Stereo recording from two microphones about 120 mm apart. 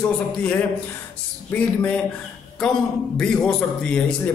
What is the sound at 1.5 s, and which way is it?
Speech, 10° left (ahead or behind).